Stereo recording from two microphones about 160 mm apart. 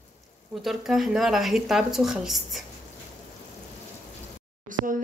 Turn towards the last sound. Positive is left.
turn(degrees=-55)  # may be behind; listen again after turning